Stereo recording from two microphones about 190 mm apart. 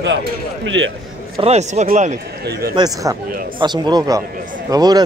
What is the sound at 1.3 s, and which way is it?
Speech, 35° right (ahead or behind).